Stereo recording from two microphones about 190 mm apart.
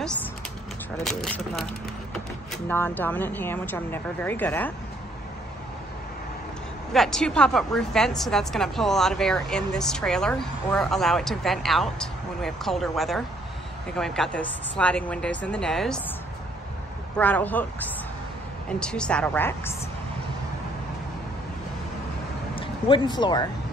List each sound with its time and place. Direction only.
0.9 s a woman's voice: 5° left (ahead or behind)
6.9 s a woman's voice: centre (ahead or behind)
17.2 s a woman's voice: 10° left (ahead or behind)
22.6 s speech: 25° left (ahead or behind)